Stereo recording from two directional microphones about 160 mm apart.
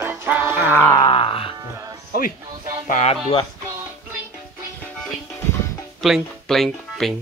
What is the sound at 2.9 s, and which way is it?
Speech, 40° left (ahead or behind).